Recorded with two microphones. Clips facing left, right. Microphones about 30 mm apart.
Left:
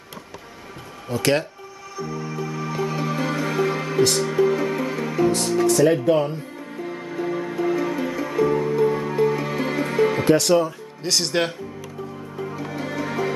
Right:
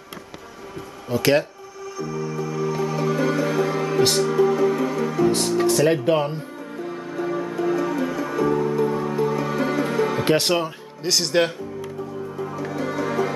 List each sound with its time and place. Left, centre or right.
1.1 s speech: centre
2.2 s music: centre
5.6 s speech: right
6.8 s music: centre
10.2 s speech: right
11.0 s speech: centre
12.5 s music: left
12.8 s music: centre